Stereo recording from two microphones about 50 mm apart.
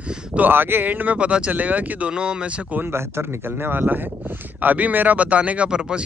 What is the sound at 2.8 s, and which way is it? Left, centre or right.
Speech, right.